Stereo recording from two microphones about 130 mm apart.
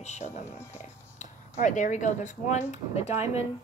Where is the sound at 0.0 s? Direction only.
60° left (ahead or behind).